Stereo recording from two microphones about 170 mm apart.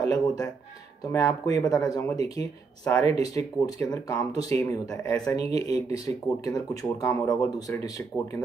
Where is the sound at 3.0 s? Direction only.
40° right (ahead or behind).